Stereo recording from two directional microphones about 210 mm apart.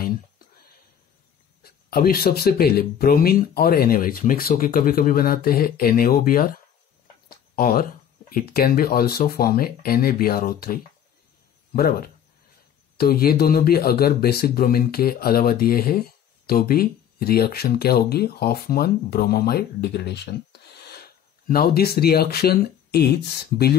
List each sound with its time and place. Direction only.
1.6 s speech: 45° left (ahead or behind)
7.2 s a sound: 45° left (ahead or behind)
8.3 s speech: 45° left (ahead or behind)